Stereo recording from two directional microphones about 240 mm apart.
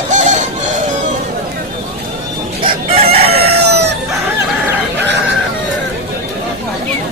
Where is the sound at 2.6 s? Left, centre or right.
Right.